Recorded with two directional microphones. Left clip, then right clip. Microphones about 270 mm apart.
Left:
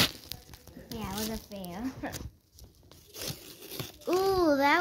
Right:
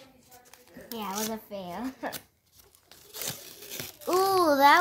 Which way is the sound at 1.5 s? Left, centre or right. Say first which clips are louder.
Right 3 dB; right.